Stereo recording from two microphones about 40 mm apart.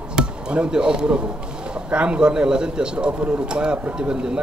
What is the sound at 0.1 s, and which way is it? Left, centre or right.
A man's voice, right.